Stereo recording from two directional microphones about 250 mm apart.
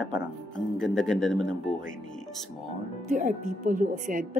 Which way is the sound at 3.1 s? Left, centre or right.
Right.